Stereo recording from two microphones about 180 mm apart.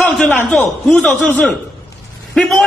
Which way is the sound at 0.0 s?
10° left (ahead or behind).